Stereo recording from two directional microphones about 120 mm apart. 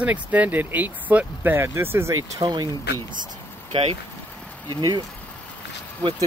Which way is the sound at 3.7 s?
55° right (ahead or behind).